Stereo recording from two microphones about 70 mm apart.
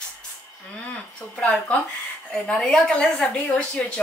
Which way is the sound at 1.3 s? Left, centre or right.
Centre.